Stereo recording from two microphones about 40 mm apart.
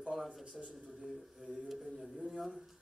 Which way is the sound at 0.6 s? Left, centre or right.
Centre.